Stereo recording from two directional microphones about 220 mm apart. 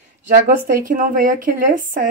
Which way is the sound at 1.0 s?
40° right (ahead or behind).